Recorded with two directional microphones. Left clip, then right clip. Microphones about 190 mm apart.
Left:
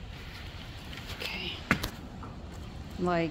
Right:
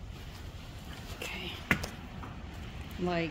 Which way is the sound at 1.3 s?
10° left (ahead or behind).